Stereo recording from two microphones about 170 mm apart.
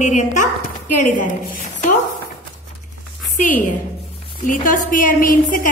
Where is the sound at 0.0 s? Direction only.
45° left (ahead or behind).